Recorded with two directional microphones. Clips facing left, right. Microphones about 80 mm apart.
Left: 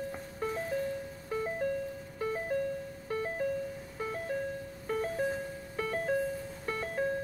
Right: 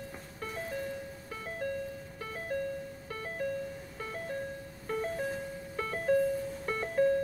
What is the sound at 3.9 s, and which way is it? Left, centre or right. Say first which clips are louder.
Music: left 4 dB; centre.